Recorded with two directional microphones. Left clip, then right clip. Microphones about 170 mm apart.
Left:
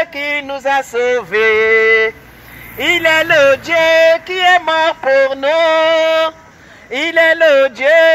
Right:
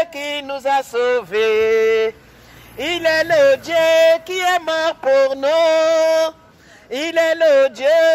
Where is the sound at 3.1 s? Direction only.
20° right (ahead or behind).